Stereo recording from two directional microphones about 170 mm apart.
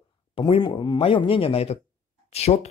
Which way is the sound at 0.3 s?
35° left (ahead or behind).